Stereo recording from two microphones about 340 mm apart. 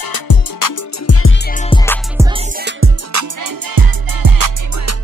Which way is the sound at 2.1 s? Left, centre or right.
Centre.